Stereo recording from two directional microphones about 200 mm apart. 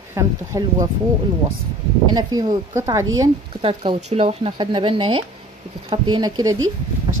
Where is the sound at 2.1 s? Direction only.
20° right (ahead or behind).